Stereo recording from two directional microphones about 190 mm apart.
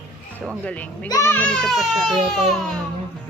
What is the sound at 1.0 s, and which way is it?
Speech, 15° left (ahead or behind).